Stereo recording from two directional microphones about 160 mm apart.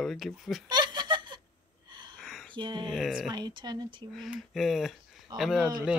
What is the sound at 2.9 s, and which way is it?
Speech, centre (ahead or behind).